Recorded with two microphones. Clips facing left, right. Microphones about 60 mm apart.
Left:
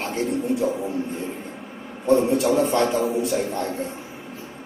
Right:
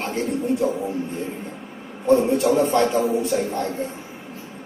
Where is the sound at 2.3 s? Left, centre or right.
Right.